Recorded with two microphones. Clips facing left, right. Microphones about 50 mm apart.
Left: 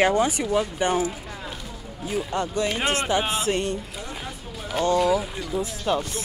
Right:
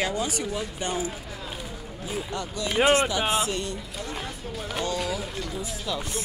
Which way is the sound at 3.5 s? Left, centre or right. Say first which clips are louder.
Left 6 dB; left.